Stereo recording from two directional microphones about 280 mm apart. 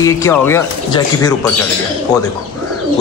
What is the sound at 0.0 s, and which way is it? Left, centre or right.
A man's voice, centre.